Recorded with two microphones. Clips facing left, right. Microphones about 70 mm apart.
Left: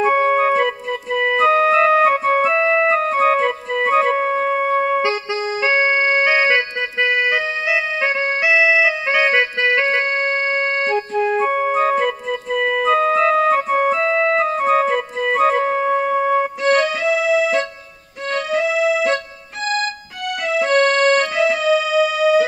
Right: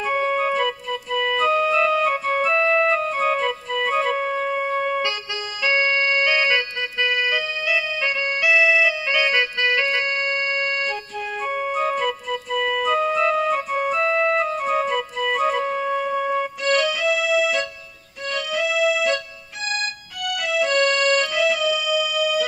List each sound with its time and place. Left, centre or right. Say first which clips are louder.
0.0 s organ: left 6 dB; left
5.6 s music: left 3 dB; left
20.4 s music: left 4 dB; left